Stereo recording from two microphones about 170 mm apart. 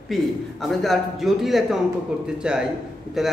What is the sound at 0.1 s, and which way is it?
A man's voice, centre (ahead or behind).